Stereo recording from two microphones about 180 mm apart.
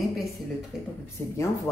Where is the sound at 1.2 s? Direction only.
20° right (ahead or behind).